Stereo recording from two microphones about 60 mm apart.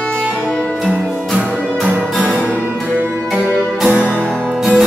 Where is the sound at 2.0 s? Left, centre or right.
Centre.